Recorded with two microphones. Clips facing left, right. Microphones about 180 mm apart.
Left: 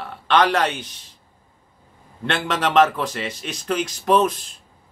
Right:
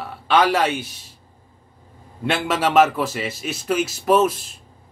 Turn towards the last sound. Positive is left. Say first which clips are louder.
# right 1 dB
turn(degrees=-5)  # may be behind; listen again after turning